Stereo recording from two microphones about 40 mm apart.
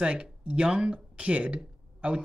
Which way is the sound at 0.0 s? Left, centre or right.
Right.